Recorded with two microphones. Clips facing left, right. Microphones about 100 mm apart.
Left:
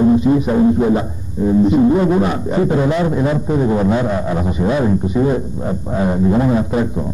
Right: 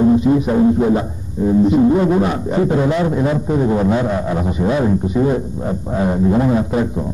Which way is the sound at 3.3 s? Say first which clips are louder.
Even; 15° left (ahead or behind).